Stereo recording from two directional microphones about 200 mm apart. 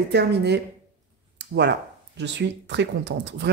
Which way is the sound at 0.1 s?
55° right (ahead or behind).